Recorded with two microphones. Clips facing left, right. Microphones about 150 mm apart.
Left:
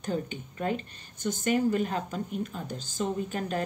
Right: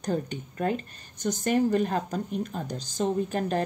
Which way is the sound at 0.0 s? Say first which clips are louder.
Right 3 dB; 45° right (ahead or behind).